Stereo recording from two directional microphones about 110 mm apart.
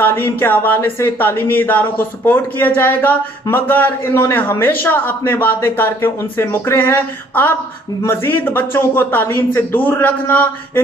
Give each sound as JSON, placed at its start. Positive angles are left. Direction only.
{"t": 0.0, "sound": "speech", "side_deg": 20}